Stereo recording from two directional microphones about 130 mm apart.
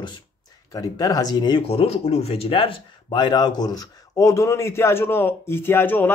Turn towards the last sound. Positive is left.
turn(degrees=15)  # may be behind; listen again after turning